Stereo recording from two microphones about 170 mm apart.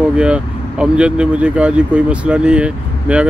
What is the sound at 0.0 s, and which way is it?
Speech, 5° right (ahead or behind).